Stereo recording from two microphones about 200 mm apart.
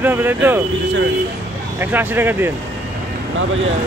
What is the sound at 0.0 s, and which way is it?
Speech, 10° right (ahead or behind).